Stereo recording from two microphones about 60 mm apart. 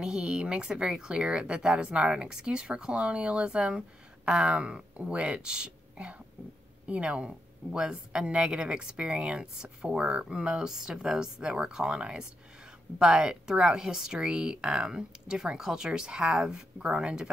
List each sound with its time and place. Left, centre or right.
0.0 s speech: centre